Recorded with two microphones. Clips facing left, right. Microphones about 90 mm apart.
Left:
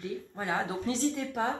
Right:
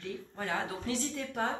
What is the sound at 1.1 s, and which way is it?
Speech, 10° left (ahead or behind).